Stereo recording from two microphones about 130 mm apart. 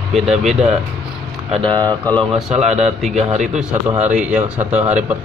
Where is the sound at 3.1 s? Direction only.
55° right (ahead or behind).